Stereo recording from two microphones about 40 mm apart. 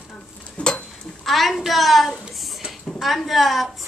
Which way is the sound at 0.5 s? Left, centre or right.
Left.